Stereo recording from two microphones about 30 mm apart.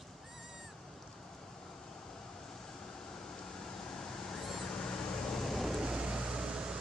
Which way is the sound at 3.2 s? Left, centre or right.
Left.